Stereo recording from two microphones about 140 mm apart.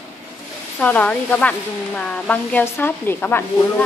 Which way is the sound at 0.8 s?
10° left (ahead or behind).